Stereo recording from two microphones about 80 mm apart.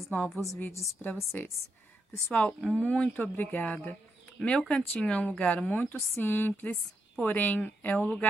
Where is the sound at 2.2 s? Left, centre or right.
Centre.